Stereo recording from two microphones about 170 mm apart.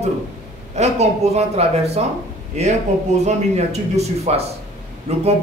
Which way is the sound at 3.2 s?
40° right (ahead or behind).